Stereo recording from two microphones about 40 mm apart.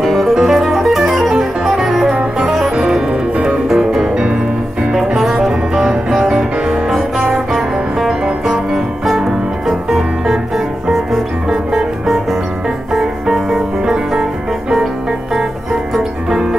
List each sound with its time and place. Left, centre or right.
0.0 s music: centre
4.1 s music: right
5.2 s music: centre
9.7 s music: centre
11.4 s music: centre
12.9 s music: centre
16.0 s music: centre